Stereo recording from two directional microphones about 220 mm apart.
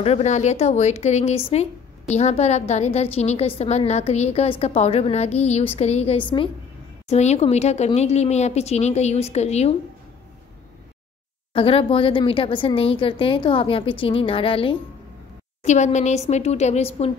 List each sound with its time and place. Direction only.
0.0 s speech: 30° left (ahead or behind)
11.5 s a woman's voice: 25° left (ahead or behind)